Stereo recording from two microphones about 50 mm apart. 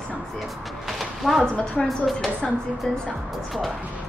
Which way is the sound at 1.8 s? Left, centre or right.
Centre.